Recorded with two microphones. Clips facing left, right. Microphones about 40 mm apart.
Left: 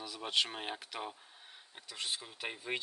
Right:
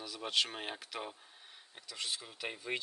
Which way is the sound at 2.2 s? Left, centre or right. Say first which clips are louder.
Even; centre.